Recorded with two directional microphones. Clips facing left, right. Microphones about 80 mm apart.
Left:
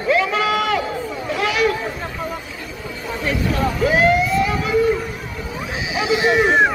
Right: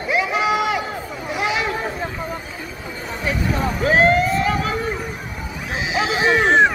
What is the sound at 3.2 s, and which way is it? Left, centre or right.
Basketball bounce, centre.